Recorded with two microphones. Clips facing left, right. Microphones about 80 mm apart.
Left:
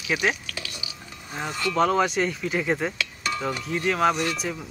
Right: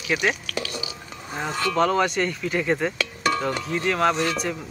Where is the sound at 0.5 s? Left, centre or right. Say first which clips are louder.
Right 7 dB; right.